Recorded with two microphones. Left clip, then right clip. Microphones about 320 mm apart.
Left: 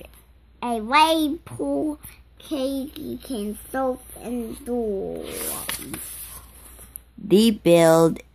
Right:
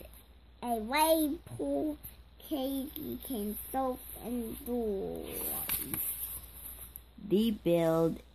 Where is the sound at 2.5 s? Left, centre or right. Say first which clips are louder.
Left 9 dB; centre.